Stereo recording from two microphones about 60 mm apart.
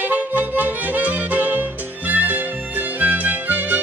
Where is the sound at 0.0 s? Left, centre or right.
Right.